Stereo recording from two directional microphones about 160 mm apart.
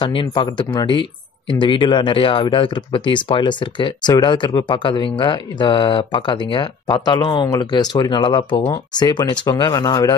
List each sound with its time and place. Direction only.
0.0 s speech: 30° left (ahead or behind)